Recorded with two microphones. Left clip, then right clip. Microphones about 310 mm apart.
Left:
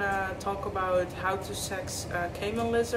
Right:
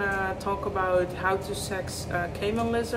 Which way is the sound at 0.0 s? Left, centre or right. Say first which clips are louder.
Right 2 dB; centre.